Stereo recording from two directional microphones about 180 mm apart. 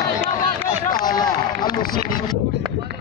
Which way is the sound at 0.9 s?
25° left (ahead or behind).